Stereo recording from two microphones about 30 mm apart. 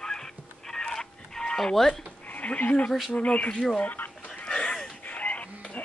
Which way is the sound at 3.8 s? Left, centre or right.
Left.